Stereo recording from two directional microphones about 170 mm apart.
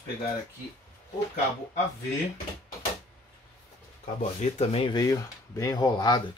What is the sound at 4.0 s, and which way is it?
Speech, 45° left (ahead or behind).